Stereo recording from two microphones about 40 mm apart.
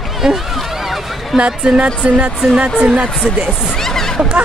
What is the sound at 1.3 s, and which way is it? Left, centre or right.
Speech, right.